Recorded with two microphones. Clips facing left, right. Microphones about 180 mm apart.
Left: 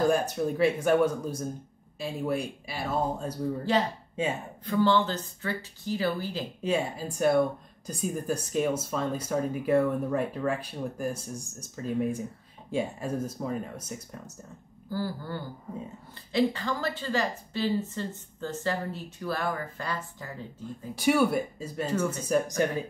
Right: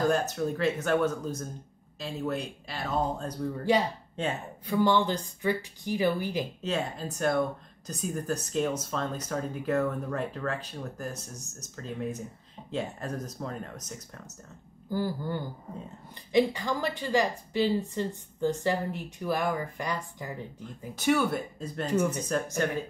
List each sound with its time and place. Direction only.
0.0 s speech: 10° left (ahead or behind)
4.6 s a woman's voice: 15° right (ahead or behind)
6.6 s speech: 10° left (ahead or behind)
14.9 s a woman's voice: 15° right (ahead or behind)
20.9 s speech: 10° left (ahead or behind)
21.9 s a woman's voice: 15° right (ahead or behind)
22.3 s speech: 15° left (ahead or behind)